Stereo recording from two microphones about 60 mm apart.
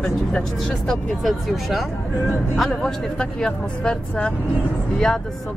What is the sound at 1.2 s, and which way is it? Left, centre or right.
Speech, centre.